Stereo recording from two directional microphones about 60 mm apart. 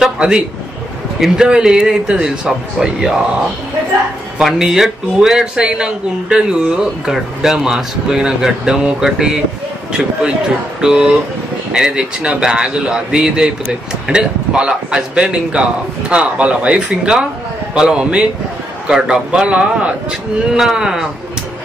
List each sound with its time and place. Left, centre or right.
0.0 s a sound: centre
1.3 s a man's voice: centre
4.4 s a man's voice: centre
10.8 s a man's voice: centre
20.5 s a man's voice: centre